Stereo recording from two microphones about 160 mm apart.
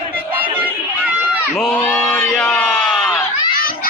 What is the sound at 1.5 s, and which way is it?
Crowd, 5° left (ahead or behind).